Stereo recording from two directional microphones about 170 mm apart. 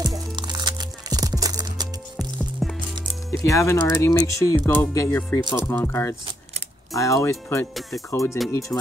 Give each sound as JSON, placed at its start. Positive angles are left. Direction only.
{"t": 0.0, "sound": "music", "side_deg": -25}
{"t": 3.4, "sound": "speech", "side_deg": 15}